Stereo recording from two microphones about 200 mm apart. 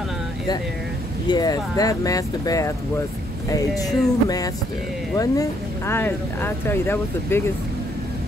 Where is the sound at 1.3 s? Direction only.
20° left (ahead or behind).